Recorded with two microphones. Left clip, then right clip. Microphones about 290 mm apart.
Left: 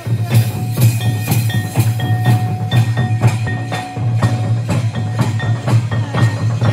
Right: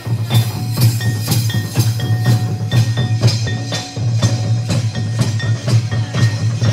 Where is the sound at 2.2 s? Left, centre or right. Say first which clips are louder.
Left 2 dB; centre.